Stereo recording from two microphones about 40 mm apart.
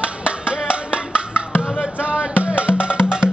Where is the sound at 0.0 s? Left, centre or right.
Right.